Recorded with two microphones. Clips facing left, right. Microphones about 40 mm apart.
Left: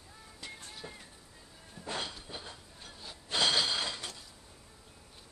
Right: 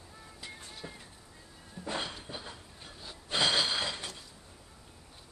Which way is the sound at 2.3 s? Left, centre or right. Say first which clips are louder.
Right 2 dB; centre.